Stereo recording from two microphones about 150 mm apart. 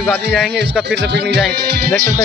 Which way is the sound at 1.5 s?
90° right.